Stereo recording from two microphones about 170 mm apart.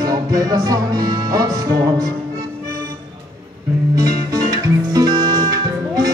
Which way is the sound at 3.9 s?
20° right (ahead or behind).